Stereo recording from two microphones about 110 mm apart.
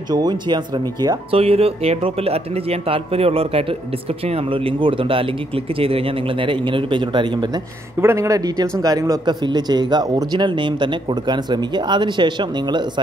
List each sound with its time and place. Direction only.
0.1 s a man's voice: 40° right (ahead or behind)
1.3 s speech: 65° right (ahead or behind)
4.5 s speech: 50° right (ahead or behind)
8.0 s a man's voice: 25° right (ahead or behind); by 13.0 s 45° right (ahead or behind)